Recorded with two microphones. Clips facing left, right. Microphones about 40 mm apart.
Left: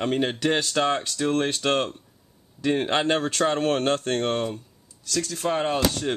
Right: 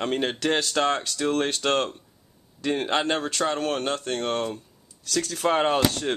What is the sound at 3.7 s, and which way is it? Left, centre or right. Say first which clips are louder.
Speech: left 4 dB; left.